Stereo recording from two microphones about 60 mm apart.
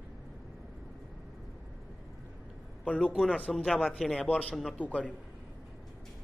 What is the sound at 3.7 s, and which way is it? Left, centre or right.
Speech, centre.